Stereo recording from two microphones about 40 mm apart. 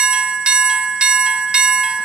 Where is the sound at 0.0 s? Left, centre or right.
Right.